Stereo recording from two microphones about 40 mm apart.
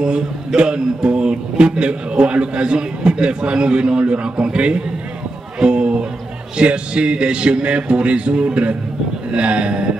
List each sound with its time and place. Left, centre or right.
0.6 s speech: right
5.6 s music: right
6.5 s speech: right